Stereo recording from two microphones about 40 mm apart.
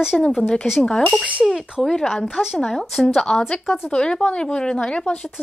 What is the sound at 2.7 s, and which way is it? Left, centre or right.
A woman's voice, centre.